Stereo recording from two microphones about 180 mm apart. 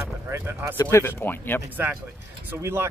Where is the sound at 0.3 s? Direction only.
15° right (ahead or behind).